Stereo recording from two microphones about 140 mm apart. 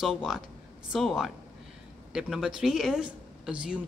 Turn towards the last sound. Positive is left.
turn(degrees=-5)  # may be behind; listen again after turning